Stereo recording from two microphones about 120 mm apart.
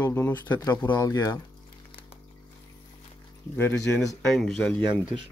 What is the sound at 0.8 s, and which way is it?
Speech, 30° left (ahead or behind).